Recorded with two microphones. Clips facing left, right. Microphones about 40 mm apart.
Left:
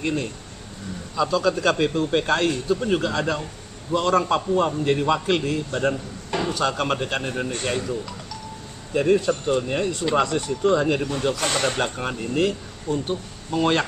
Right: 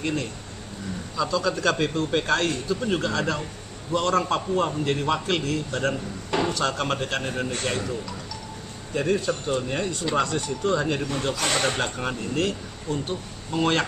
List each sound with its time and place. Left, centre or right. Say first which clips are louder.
1.1 s a man's voice: left 4 dB; left
1.5 s speech: left 3 dB; centre
8.9 s speech: left 5 dB; centre
11.8 s speech: left 2 dB; centre